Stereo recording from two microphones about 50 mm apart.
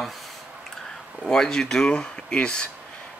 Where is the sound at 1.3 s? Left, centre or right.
Centre.